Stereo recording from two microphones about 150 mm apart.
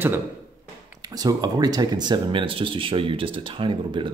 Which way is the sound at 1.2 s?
25° right (ahead or behind).